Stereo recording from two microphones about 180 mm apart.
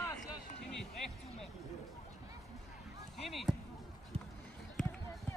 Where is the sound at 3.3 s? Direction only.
Centre (ahead or behind).